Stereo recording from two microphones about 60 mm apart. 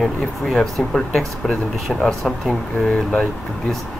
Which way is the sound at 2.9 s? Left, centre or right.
Left.